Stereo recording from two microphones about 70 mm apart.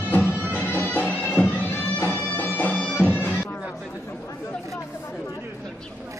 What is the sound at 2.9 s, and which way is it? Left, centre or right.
Bagpipes, left.